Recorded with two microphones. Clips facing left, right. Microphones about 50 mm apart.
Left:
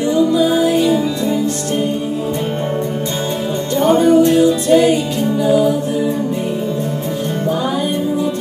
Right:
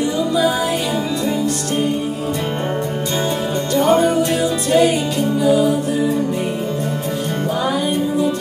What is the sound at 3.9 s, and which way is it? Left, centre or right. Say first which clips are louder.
Music: left 5 dB; right.